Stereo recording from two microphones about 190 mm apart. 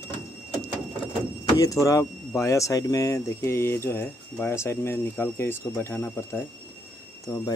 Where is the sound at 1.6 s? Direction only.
15° left (ahead or behind).